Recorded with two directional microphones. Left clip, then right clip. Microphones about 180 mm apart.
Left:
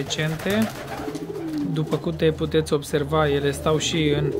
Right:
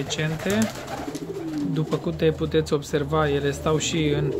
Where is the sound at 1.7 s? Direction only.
Centre (ahead or behind).